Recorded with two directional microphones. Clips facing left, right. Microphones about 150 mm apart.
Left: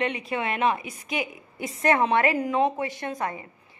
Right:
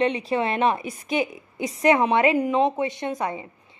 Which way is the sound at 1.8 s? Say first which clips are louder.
Right 3 dB; 15° right (ahead or behind).